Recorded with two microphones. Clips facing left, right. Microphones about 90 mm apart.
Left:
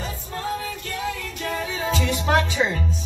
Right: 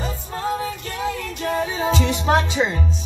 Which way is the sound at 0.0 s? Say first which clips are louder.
Right 4 dB; 35° right (ahead or behind).